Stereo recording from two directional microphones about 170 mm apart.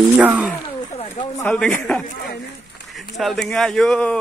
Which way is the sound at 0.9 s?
35° left (ahead or behind).